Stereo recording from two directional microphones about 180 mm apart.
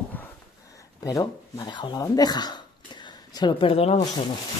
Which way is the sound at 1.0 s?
20° left (ahead or behind).